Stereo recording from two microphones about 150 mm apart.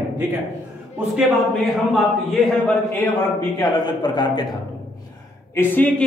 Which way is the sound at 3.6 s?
30° left (ahead or behind).